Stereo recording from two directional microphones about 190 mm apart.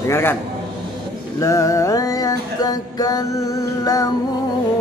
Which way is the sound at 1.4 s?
15° left (ahead or behind).